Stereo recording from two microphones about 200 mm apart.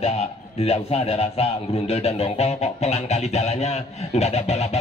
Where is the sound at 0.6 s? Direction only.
30° left (ahead or behind).